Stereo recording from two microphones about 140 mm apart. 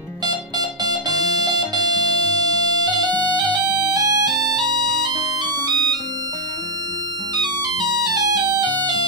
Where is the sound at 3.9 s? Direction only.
25° right (ahead or behind).